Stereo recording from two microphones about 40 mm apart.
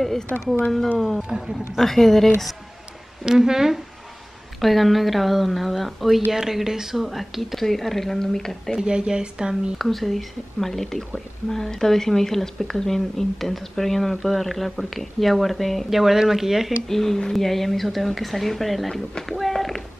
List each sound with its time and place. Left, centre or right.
0.3 s speech: centre
1.9 s speech: centre
3.3 s speech: centre
4.6 s speech: centre
8.7 s speech: right
9.8 s speech: centre
16.8 s speech: centre